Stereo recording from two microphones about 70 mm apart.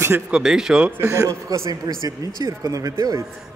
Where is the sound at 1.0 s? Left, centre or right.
Right.